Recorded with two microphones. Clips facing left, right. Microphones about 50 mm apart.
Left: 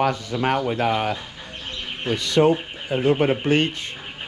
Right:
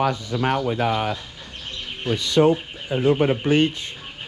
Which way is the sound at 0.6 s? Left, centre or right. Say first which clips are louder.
Even; left.